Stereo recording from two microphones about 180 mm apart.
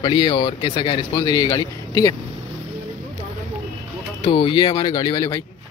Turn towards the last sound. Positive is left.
turn(degrees=20)  # may be behind; listen again after turning